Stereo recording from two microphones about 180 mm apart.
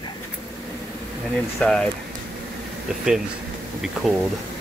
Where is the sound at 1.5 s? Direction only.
5° left (ahead or behind).